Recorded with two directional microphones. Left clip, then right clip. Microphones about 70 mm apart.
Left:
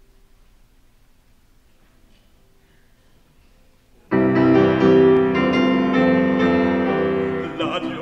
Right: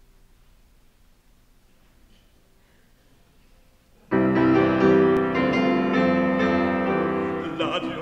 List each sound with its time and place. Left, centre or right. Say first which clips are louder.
4.1 s music: left 4 dB; right